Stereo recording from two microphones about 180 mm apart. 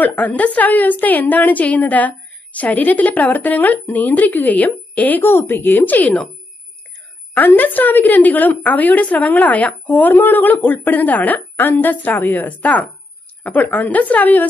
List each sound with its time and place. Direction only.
0.0 s a woman's voice: 10° left (ahead or behind)
7.3 s a woman's voice: 10° left (ahead or behind)